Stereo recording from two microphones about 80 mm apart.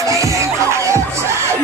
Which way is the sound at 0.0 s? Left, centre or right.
Right.